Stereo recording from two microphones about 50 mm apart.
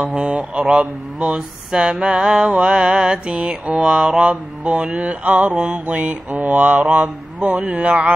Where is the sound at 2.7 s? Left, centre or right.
Centre.